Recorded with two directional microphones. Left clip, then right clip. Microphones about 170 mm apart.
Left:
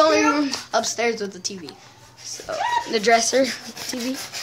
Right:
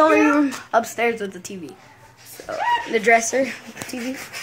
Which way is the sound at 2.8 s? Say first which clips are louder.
Right 1 dB; 5° left (ahead or behind).